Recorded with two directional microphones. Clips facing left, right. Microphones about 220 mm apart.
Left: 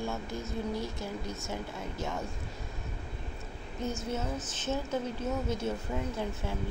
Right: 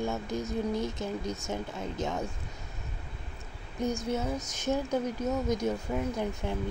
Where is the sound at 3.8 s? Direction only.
10° right (ahead or behind).